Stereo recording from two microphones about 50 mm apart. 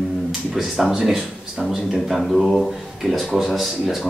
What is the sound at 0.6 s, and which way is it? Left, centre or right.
A man's voice, centre.